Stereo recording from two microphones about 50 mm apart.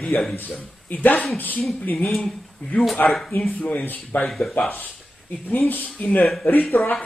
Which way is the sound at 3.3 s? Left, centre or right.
Left.